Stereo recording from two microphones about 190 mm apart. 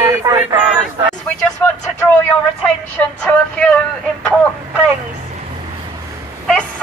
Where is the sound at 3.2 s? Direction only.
5° left (ahead or behind).